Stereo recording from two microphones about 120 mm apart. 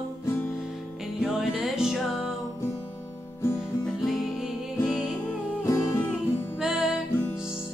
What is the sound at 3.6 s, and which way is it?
Music, 5° right (ahead or behind).